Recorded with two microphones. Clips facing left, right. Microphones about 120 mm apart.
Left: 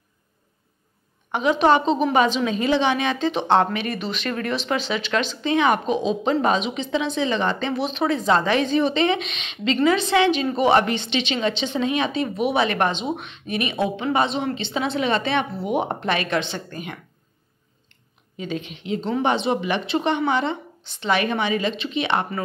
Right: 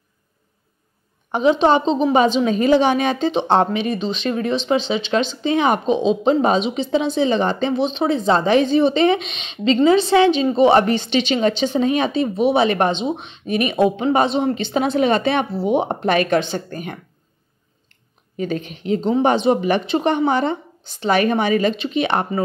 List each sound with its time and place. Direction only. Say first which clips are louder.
1.3 s a woman's voice: right 3 dB; 30° right (ahead or behind)
3.9 s a woman's voice: right 5 dB; 25° right (ahead or behind); by 17.0 s 40° right (ahead or behind)
18.4 s a woman's voice: right 5 dB; 45° right (ahead or behind)